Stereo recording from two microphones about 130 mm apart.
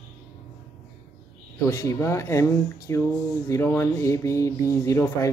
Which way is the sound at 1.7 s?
20° left (ahead or behind).